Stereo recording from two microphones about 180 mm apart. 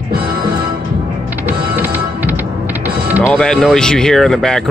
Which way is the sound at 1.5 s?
10° right (ahead or behind).